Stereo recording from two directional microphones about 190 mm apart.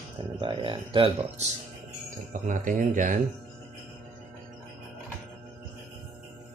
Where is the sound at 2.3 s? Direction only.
45° right (ahead or behind).